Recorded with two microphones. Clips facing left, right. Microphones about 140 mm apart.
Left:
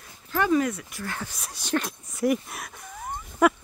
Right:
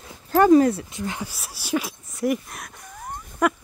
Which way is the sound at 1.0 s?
15° right (ahead or behind).